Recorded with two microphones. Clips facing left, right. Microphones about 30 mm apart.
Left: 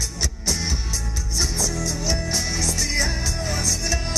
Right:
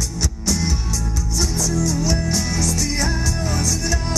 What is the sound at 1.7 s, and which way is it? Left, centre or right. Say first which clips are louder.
Music: right 5 dB; left.